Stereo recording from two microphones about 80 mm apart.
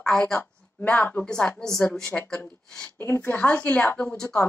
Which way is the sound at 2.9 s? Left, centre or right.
Left.